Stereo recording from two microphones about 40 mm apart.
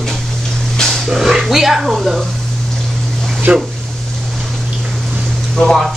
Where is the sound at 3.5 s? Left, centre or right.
Right.